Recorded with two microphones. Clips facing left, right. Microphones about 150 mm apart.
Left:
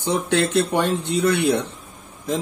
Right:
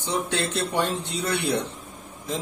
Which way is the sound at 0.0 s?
60° left (ahead or behind).